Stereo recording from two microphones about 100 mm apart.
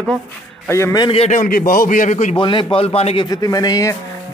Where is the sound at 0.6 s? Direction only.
25° left (ahead or behind).